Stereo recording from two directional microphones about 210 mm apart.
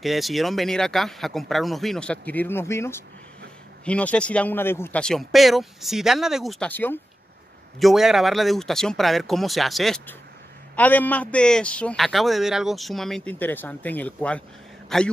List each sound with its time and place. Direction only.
0.0 s a man's voice: centre (ahead or behind)
7.8 s a man's voice: centre (ahead or behind)